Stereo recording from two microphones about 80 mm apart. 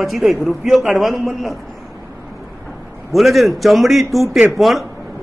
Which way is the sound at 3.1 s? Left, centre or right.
Centre.